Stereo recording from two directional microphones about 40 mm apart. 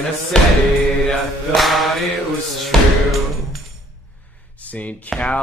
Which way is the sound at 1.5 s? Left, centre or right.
Centre.